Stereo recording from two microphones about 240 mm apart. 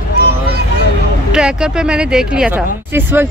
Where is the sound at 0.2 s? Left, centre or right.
Right.